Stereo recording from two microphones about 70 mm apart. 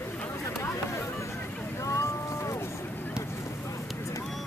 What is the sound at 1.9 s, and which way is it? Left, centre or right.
Boat, left.